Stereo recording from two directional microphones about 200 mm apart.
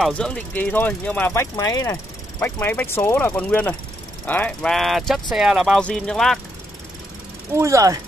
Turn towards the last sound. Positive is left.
turn(degrees=-15)  # may be behind; listen again after turning